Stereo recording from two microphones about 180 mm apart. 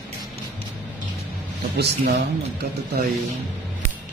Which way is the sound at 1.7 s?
65° right (ahead or behind).